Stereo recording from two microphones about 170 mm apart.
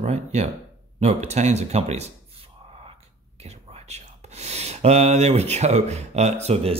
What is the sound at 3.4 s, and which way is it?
Speech, 40° right (ahead or behind).